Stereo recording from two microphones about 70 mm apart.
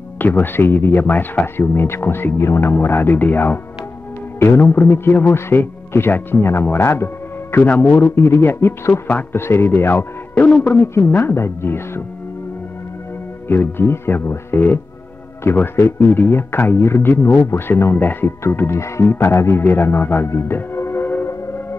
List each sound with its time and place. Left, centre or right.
0.2 s speech: left
7.5 s speech: left
8.0 s speech: left
13.5 s speech: left